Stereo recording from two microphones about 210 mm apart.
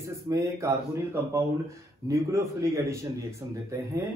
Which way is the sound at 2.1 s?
15° right (ahead or behind).